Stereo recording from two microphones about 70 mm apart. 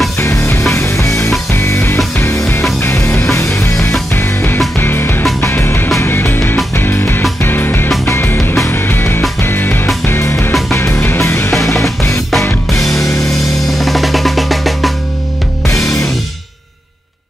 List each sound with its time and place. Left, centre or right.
0.2 s music: left
13.7 s drum: centre
15.6 s music: left